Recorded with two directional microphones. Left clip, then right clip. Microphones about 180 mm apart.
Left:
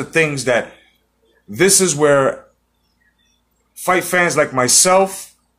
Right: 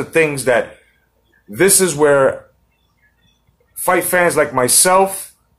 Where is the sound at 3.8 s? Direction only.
Centre (ahead or behind).